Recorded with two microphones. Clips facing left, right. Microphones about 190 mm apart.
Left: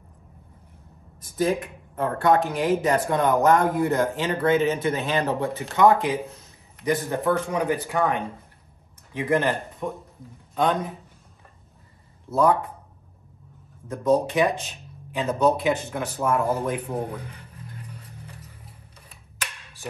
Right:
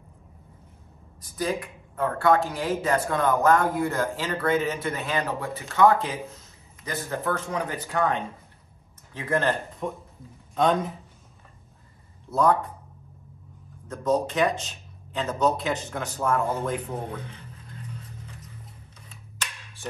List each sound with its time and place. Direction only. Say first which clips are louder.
1.3 s a man's voice: left 5 dB; 25° left (ahead or behind)
9.8 s a man's voice: left 1 dB; 5° left (ahead or behind)
13.8 s a man's voice: left 3 dB; 10° left (ahead or behind)